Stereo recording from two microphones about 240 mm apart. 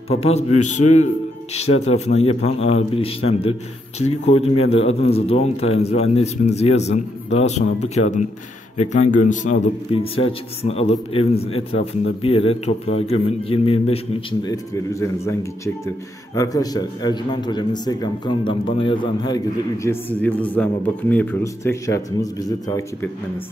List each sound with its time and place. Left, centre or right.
0.1 s a man's voice: left